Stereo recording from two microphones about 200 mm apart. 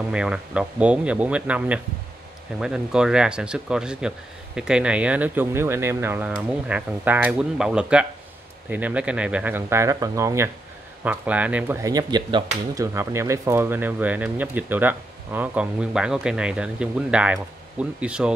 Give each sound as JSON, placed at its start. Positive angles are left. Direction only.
{"t": 0.1, "sound": "speech", "side_deg": -5}